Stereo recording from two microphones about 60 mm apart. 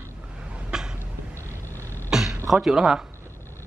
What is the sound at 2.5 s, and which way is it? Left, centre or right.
Speech, centre.